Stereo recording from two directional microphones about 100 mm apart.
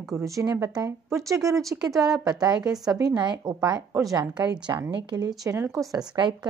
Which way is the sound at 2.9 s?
45° right (ahead or behind).